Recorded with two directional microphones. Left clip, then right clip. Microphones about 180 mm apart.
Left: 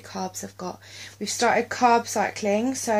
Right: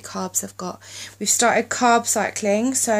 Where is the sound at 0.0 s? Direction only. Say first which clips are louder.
Right 4 dB; 30° right (ahead or behind).